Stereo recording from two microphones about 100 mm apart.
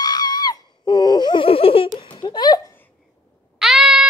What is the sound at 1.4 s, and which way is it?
Baby laughter, 70° left (ahead or behind).